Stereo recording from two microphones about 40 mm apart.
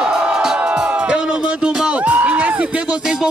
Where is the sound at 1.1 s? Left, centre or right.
Right.